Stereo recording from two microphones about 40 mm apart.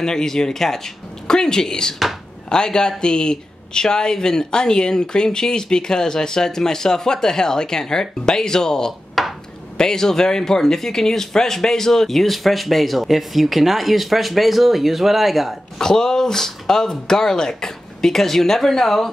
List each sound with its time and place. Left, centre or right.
0.0 s a man's voice: centre
9.2 s a sound: centre
9.8 s speech: centre
15.8 s speech: centre